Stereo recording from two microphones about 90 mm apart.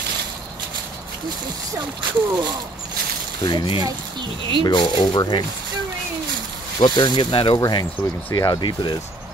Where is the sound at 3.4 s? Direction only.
65° left (ahead or behind).